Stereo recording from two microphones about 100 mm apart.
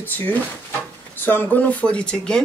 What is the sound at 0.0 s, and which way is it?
Speech, 20° left (ahead or behind).